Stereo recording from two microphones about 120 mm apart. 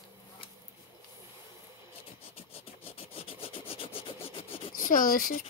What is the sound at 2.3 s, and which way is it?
Rub, 55° left (ahead or behind).